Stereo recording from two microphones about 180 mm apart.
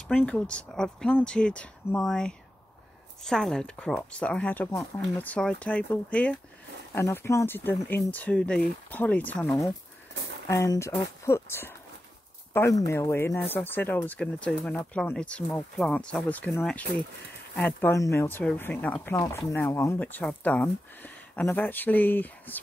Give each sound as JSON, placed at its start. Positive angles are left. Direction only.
{"t": 0.1, "sound": "speech", "side_deg": 5}